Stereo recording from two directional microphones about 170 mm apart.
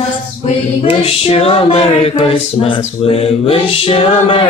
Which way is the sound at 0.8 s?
35° left (ahead or behind).